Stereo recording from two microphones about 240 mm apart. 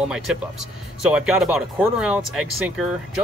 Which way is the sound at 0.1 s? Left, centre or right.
Centre.